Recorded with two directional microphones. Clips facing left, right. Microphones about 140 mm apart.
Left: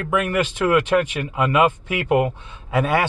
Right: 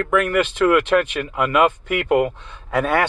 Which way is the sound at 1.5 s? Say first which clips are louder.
Right 2 dB; 15° left (ahead or behind).